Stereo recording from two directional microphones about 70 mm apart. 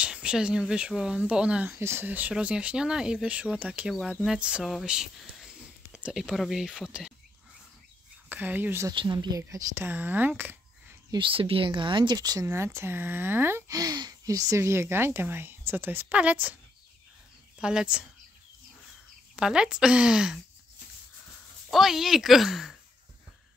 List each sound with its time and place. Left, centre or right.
0.0 s speech: centre
1.7 s speech: right
2.0 s speech: right
8.3 s speech: right
9.1 s speech: right
9.8 s speech: right
11.7 s speech: right
12.4 s speech: right
13.7 s speech: right
14.2 s speech: right
17.6 s speech: centre
19.3 s speech: centre
21.6 s speech: centre